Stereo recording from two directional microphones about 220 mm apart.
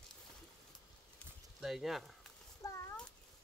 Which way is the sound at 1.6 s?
Centre (ahead or behind).